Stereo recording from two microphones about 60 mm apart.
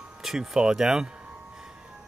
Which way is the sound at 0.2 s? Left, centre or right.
Centre.